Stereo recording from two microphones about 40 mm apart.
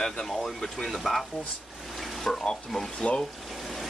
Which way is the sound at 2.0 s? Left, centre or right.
Centre.